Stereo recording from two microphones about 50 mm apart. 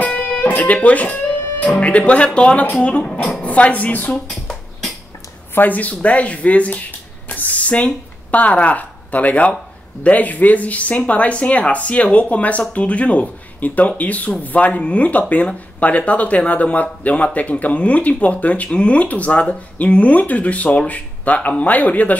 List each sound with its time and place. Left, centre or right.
0.0 s guitar: left
0.6 s speech: left
4.1 s a sound: centre
5.5 s speech: left